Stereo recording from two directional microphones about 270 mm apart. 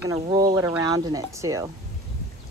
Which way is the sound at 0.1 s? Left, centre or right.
Centre.